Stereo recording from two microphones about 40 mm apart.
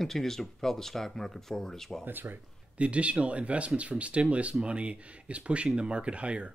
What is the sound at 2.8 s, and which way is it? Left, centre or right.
Speech, right.